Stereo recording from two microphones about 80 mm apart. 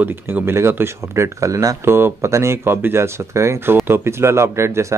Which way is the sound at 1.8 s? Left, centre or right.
Right.